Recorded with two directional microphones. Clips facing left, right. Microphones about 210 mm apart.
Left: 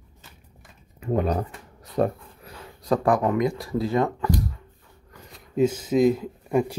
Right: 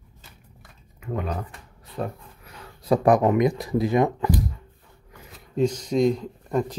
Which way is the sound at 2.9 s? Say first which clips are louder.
Right 3 dB; 20° right (ahead or behind).